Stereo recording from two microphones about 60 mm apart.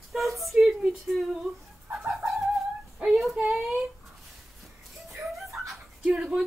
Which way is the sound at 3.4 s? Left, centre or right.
Centre.